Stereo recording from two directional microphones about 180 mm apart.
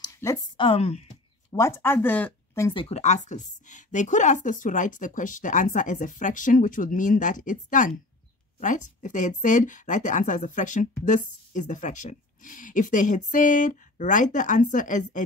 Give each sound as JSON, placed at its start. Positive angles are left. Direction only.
{"t": 0.0, "sound": "speech", "side_deg": 20}
{"t": 0.7, "sound": "speech", "side_deg": 35}
{"t": 1.5, "sound": "speech", "side_deg": 15}
{"t": 2.7, "sound": "a woman's voice", "side_deg": 35}